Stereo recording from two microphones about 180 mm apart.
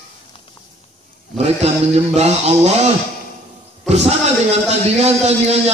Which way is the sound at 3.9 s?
35° right (ahead or behind).